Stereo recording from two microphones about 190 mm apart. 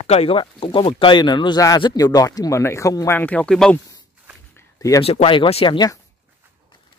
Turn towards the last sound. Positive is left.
turn(degrees=25)  # may be behind; listen again after turning